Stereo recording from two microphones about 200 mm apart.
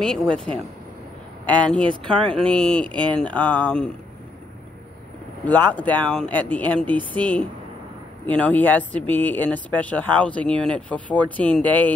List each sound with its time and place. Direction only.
0.0 s speech: 5° left (ahead or behind)
5.4 s speech: 10° left (ahead or behind)